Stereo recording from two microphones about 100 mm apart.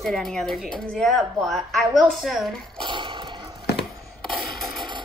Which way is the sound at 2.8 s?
55° right (ahead or behind).